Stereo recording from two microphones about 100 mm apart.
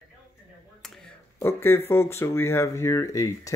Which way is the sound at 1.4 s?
25° left (ahead or behind).